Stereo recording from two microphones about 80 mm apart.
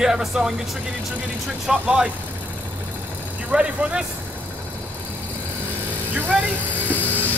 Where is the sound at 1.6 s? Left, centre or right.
Centre.